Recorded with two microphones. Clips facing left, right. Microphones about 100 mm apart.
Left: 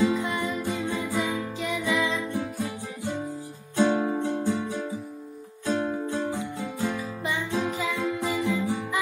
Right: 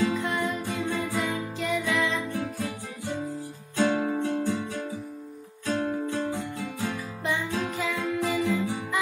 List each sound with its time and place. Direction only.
0.0 s music: 5° left (ahead or behind)
4.0 s music: 15° left (ahead or behind)
5.7 s music: 10° left (ahead or behind)